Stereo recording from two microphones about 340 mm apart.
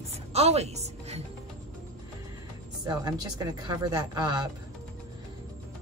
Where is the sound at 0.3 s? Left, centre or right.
Centre.